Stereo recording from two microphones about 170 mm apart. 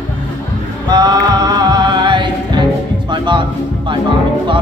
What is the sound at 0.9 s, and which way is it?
Music, 25° right (ahead or behind).